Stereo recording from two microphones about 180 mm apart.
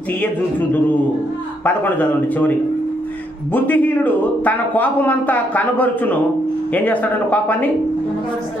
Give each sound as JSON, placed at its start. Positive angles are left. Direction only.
{"t": 1.6, "sound": "a man's voice", "side_deg": 10}
{"t": 3.5, "sound": "a man's voice", "side_deg": 10}